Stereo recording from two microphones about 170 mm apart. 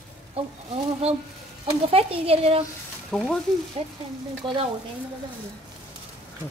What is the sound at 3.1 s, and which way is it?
Frying, 5° left (ahead or behind).